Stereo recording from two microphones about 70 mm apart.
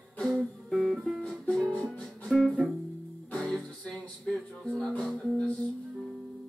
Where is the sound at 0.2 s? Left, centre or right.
Centre.